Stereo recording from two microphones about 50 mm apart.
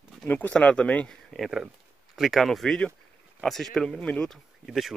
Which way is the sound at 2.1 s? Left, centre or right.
Centre.